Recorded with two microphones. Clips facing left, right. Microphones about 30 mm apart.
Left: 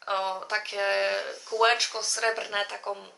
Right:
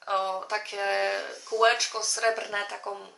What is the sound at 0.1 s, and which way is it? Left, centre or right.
Speech, left.